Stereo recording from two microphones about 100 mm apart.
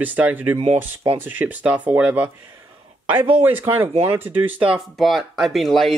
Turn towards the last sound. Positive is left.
turn(degrees=0)  # may be behind; listen again after turning